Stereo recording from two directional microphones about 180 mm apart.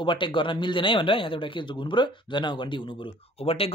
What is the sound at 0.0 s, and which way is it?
Speech, 25° left (ahead or behind).